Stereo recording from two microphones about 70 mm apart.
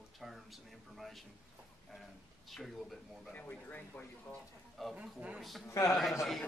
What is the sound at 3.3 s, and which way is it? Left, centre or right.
Speech, left.